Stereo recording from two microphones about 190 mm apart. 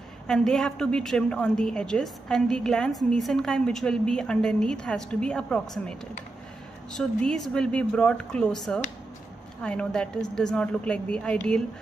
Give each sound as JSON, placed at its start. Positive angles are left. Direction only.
{"t": 0.3, "sound": "a woman's voice", "side_deg": 5}